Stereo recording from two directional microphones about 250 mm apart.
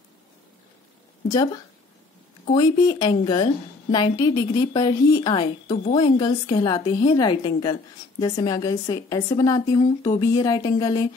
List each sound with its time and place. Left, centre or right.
1.3 s a woman's voice: centre